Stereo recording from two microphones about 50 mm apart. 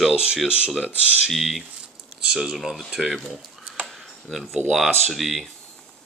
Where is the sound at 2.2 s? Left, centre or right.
Centre.